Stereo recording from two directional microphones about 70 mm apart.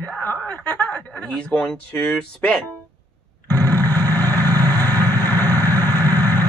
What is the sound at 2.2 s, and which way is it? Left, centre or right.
Speech, centre.